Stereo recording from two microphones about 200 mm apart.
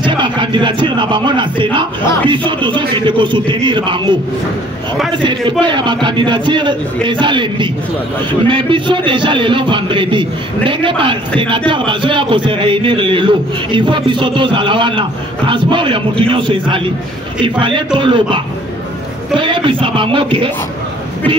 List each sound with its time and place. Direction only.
0.0 s a man's voice: 25° right (ahead or behind)
5.2 s a man's voice: 25° right (ahead or behind)